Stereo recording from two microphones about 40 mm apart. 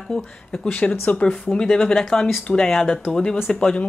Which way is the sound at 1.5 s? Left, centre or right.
Centre.